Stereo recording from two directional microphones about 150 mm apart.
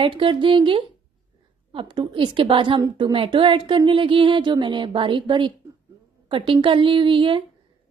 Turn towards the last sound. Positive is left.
turn(degrees=-35)  # may be behind; listen again after turning